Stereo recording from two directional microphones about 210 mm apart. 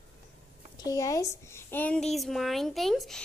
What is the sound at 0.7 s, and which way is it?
A child's voice, 15° left (ahead or behind).